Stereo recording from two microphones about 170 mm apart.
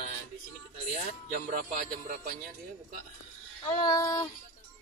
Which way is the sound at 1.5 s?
55° right (ahead or behind).